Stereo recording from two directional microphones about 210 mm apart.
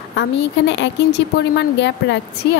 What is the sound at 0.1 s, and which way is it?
A woman's voice, 60° left (ahead or behind).